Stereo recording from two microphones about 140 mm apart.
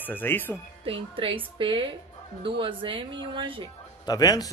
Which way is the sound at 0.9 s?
40° right (ahead or behind).